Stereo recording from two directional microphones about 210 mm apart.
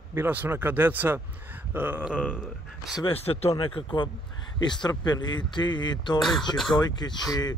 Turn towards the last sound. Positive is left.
turn(degrees=20)  # may be behind; listen again after turning